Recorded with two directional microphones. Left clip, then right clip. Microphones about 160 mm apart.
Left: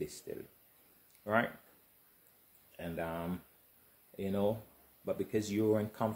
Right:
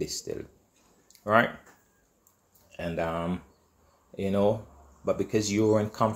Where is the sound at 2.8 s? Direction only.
15° left (ahead or behind).